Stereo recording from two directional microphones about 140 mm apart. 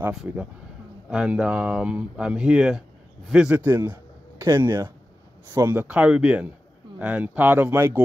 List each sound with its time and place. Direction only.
0.1 s a man's voice: centre (ahead or behind)